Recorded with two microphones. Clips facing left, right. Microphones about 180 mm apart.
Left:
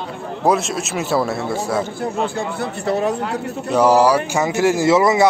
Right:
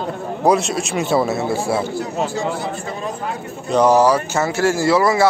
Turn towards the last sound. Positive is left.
turn(degrees=20)  # may be behind; listen again after turning